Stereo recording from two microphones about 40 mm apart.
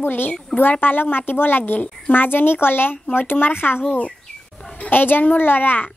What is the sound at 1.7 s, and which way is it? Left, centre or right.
Speech, left.